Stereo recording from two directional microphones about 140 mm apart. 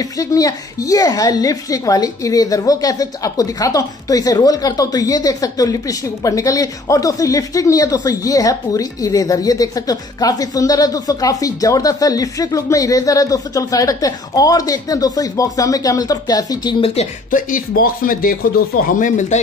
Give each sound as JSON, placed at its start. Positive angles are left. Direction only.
{"t": 0.0, "sound": "speech", "side_deg": 25}
{"t": 16.8, "sound": "speech", "side_deg": 50}
{"t": 17.3, "sound": "speech", "side_deg": 75}